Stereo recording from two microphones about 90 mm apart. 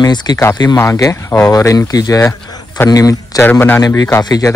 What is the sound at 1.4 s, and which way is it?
Speech, 35° left (ahead or behind).